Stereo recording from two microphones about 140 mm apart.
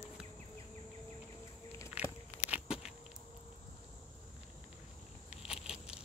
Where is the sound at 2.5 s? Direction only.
5° right (ahead or behind).